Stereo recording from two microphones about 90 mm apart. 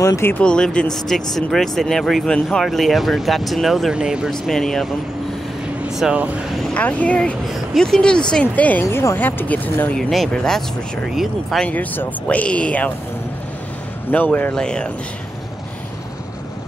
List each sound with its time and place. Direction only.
0.0 s speech: 35° left (ahead or behind)
0.4 s speech: 10° left (ahead or behind); by 4.3 s 10° right (ahead or behind)
4.3 s speech: 5° left (ahead or behind)
5.9 s vehicle: 5° right (ahead or behind)
6.7 s speech: 15° left (ahead or behind)
7.4 s speech: centre (ahead or behind); by 9.9 s 20° left (ahead or behind)
9.9 s speech: 5° left (ahead or behind)
11.7 s speech: 20° left (ahead or behind)
14.1 s speech: 20° left (ahead or behind)
14.5 s speech: 10° left (ahead or behind)